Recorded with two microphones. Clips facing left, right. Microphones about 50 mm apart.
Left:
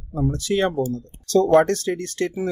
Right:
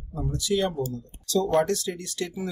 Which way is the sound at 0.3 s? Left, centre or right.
Left.